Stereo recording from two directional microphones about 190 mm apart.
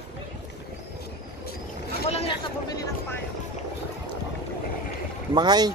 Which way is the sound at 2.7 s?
20° left (ahead or behind).